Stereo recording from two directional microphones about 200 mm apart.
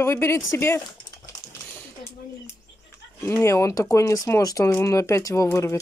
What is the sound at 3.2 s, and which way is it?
Speech, 10° left (ahead or behind).